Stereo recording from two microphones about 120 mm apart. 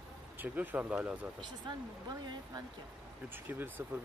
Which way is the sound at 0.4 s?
15° right (ahead or behind).